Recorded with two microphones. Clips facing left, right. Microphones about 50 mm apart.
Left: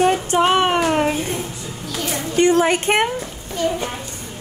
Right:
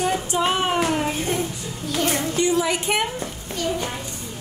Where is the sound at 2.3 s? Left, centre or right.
Left.